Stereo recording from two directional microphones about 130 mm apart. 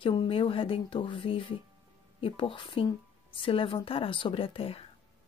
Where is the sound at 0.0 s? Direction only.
40° left (ahead or behind).